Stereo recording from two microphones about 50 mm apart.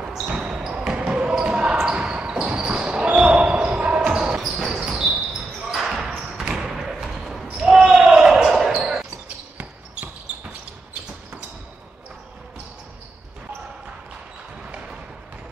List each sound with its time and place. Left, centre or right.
0.1 s basketball bounce: centre
4.4 s basketball bounce: centre
6.6 s thump: centre
7.5 s basketball bounce: centre
14.6 s basketball bounce: right